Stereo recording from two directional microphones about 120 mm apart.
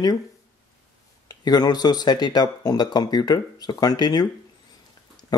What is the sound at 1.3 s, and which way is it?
Speech, 35° left (ahead or behind).